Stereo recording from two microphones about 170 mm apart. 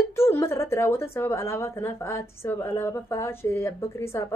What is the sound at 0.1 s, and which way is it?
A woman's voice, 15° left (ahead or behind).